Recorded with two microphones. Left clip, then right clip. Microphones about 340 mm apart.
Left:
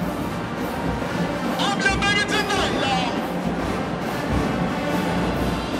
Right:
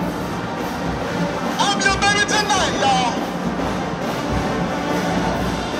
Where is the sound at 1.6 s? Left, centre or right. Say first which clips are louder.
Right 4 dB; centre.